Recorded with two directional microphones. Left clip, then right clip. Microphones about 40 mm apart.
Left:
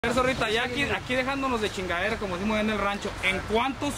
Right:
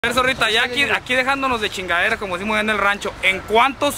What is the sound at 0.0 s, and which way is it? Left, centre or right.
Speech, centre.